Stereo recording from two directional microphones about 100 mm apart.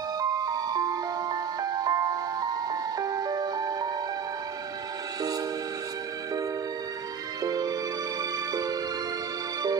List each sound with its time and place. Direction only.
0.2 s music: 40° right (ahead or behind)
7.4 s music: 40° right (ahead or behind)